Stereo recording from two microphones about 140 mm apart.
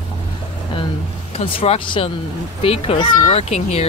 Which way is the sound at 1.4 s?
40° left (ahead or behind).